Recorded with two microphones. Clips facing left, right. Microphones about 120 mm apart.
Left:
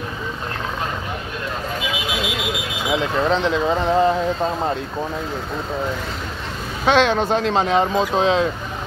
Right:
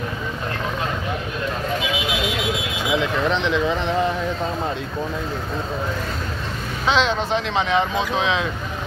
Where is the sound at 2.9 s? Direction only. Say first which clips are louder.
Left 2 dB; 35° left (ahead or behind).